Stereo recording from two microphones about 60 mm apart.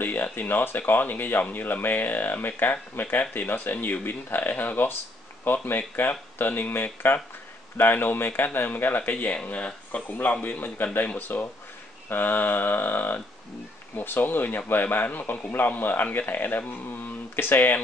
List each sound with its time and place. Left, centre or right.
0.0 s speech: left
9.1 s speech: centre; by 17.7 s left